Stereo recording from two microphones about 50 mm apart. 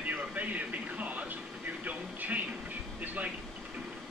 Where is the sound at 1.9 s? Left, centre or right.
Right.